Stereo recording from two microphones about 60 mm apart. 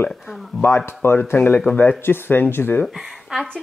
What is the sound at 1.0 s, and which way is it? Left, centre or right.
Speech, left.